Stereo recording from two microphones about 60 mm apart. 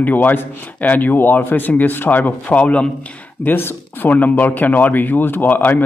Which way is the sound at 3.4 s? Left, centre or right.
Left.